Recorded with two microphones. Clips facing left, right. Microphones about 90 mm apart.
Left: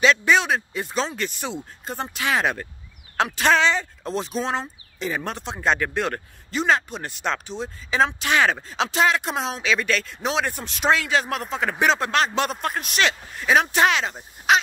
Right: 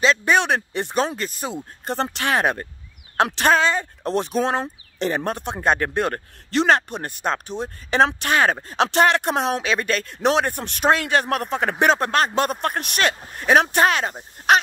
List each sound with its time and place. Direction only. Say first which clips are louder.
0.0 s speech: even; 40° right (ahead or behind); by 0.8 s 60° right (ahead or behind)
1.1 s speech: right 1 dB; 35° right (ahead or behind)
1.9 s speech: right 3 dB; 60° right (ahead or behind); by 3.8 s 45° right (ahead or behind)
4.0 s speech: right 5 dB; 60° right (ahead or behind)
6.5 s speech: right 3 dB; 65° right (ahead or behind)
8.2 s speech: right 1 dB; 45° right (ahead or behind)
8.6 s speech: right 3 dB; 55° right (ahead or behind)
14.5 s a sound: right 2 dB; 50° right (ahead or behind)